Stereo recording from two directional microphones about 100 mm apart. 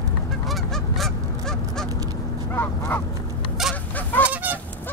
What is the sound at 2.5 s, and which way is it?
Goose, 20° left (ahead or behind).